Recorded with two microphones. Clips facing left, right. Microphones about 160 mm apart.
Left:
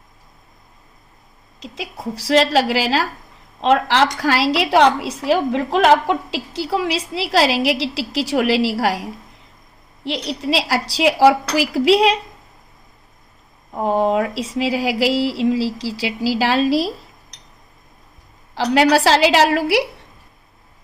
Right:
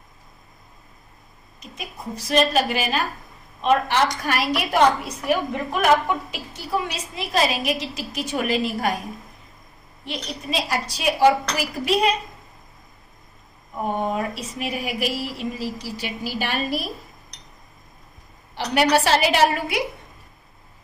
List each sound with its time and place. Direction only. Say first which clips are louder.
1.6 s a woman's voice: left 6 dB; 90° left
13.7 s a woman's voice: left 7 dB; 90° left
18.5 s a woman's voice: left 5 dB; 90° left